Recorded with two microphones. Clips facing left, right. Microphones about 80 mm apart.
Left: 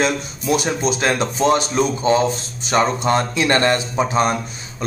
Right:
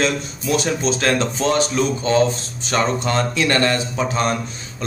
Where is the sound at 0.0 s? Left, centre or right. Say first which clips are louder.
Left 1 dB; centre.